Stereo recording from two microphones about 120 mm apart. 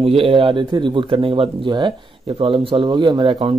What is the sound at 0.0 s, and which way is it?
Speech, 50° right (ahead or behind).